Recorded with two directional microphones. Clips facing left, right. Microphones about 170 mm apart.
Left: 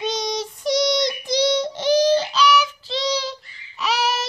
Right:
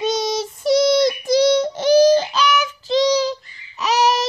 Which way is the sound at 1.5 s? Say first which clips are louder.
Right 4 dB; 45° right (ahead or behind).